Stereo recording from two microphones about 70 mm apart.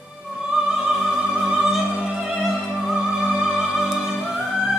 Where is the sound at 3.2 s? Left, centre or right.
Centre.